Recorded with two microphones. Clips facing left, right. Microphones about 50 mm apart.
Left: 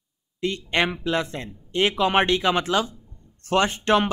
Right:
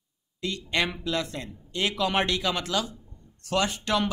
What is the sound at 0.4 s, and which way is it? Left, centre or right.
Speech, left.